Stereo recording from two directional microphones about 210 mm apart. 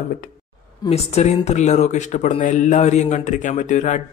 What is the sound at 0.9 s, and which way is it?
Speech, 30° left (ahead or behind).